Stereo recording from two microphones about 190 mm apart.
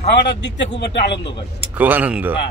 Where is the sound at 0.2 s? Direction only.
65° left (ahead or behind).